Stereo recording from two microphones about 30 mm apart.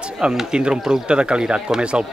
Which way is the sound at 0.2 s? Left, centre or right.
Right.